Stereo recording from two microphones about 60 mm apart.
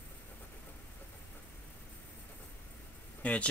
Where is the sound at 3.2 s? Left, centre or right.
Left.